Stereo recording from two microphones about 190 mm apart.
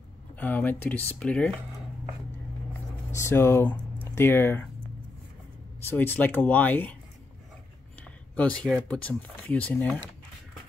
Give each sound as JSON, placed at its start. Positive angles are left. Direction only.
{"t": 0.4, "sound": "speech", "side_deg": 10}
{"t": 3.2, "sound": "speech", "side_deg": 15}
{"t": 5.9, "sound": "speech", "side_deg": 10}
{"t": 8.0, "sound": "speech", "side_deg": 5}